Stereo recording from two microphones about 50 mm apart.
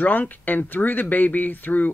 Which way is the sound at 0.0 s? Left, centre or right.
Left.